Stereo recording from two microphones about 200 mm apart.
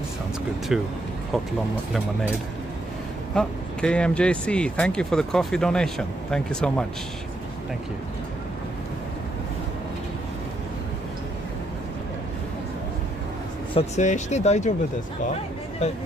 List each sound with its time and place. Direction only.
0.7 s speech: centre (ahead or behind)
3.3 s speech: 5° left (ahead or behind)
13.7 s speech: 35° left (ahead or behind)
15.8 s speech: 30° left (ahead or behind)